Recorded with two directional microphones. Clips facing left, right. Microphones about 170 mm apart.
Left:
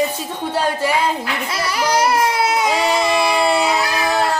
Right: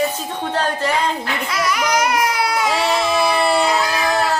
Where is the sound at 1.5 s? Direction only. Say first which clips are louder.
Even; 30° left (ahead or behind).